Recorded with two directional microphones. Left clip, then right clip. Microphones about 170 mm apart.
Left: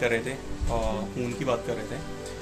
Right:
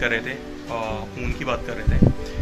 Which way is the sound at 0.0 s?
15° left (ahead or behind).